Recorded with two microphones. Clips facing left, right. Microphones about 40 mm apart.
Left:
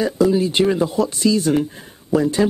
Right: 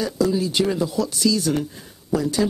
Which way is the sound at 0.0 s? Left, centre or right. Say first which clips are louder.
Left 5 dB; left.